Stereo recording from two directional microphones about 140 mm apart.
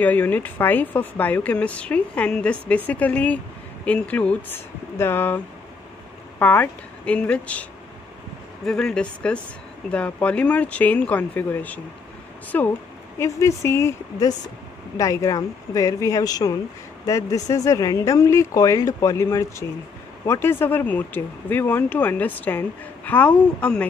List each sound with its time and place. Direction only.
0.0 s speech: 10° left (ahead or behind)
6.4 s speech: 10° left (ahead or behind)
8.6 s speech: 5° left (ahead or behind)